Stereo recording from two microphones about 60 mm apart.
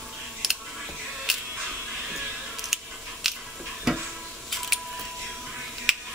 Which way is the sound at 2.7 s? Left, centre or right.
Centre.